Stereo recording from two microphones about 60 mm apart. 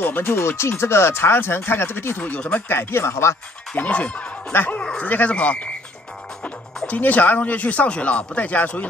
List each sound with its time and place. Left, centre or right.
0.0 s speech: left
2.1 s speech: left
2.7 s speech: left
3.7 s speech: left
4.5 s speech: left
6.9 s speech: left